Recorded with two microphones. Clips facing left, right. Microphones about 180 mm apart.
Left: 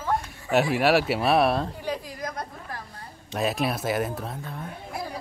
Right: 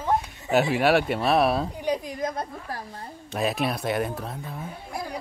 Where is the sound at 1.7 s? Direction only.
20° right (ahead or behind).